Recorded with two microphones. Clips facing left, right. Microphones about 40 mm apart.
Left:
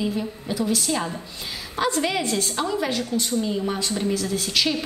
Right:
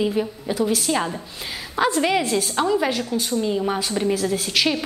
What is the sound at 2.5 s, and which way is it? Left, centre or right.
Speech, right.